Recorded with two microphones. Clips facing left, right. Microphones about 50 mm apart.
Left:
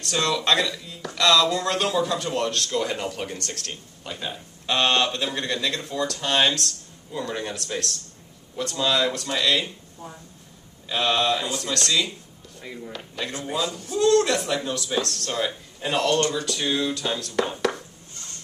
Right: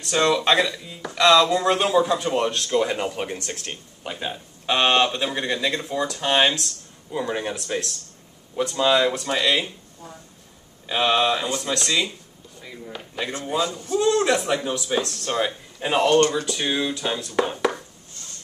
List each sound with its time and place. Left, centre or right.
0.0 s speech: centre
10.9 s speech: centre
12.5 s speech: centre
12.9 s speech: centre
16.2 s speech: right
16.4 s speech: centre